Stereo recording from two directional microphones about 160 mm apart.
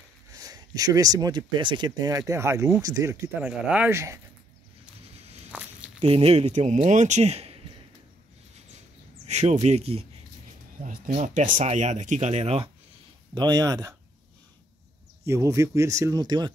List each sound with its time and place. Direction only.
0.3 s speech: 20° right (ahead or behind)
3.4 s speech: 10° right (ahead or behind)
5.5 s walk: 10° right (ahead or behind)
5.9 s speech: 40° right (ahead or behind)
9.3 s speech: 45° right (ahead or behind)
13.3 s speech: 25° right (ahead or behind)
15.2 s speech: 20° right (ahead or behind)